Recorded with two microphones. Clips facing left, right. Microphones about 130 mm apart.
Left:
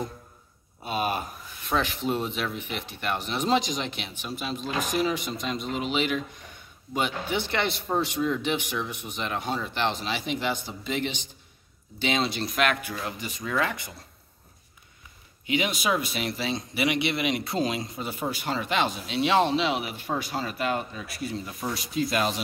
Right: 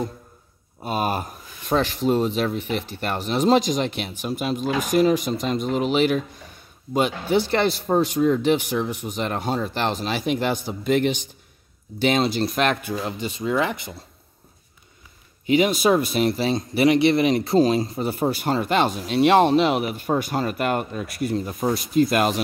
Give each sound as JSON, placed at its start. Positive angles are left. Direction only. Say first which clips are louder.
{"t": 0.8, "sound": "speech", "louder": "right 4 dB", "side_deg": -40}
{"t": 15.4, "sound": "speech", "louder": "right 8 dB", "side_deg": -40}